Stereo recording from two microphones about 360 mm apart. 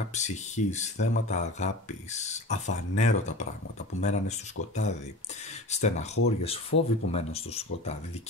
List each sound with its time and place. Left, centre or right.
0.1 s speech: centre